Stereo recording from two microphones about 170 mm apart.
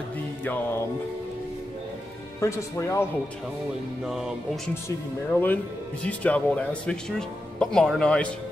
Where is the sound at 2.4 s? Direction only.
15° left (ahead or behind).